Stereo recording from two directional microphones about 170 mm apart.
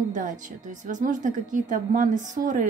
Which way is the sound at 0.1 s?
50° right (ahead or behind).